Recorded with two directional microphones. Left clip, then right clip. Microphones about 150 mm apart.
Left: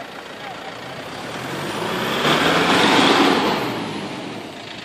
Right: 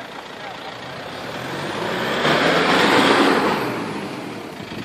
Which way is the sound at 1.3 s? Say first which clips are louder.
Even; 65° left (ahead or behind).